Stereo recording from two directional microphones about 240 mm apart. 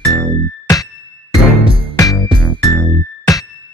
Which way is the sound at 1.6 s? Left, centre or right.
Right.